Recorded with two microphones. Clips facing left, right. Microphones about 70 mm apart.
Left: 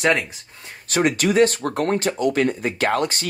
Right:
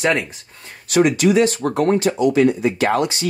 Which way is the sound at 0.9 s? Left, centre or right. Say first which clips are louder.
Right 4 dB; left.